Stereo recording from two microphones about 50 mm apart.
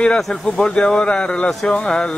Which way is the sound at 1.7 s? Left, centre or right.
Left.